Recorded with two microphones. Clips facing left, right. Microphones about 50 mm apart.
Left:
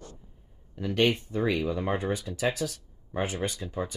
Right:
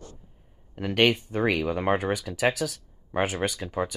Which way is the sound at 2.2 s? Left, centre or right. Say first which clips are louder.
Right 4 dB; right.